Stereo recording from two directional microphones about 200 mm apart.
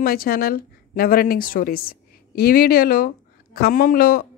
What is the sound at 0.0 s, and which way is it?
A woman's voice, 50° left (ahead or behind).